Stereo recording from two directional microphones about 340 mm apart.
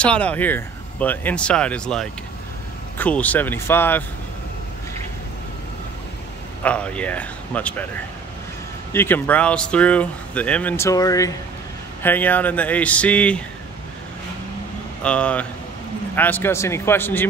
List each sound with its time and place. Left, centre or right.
0.0 s speech: centre
6.6 s speech: centre
8.9 s speech: centre
15.0 s speech: centre